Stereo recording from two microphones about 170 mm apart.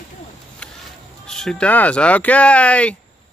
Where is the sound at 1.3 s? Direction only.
5° left (ahead or behind).